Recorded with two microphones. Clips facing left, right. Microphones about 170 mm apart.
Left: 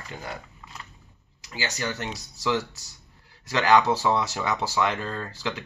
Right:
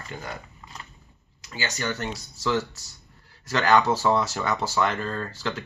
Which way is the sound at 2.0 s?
15° left (ahead or behind).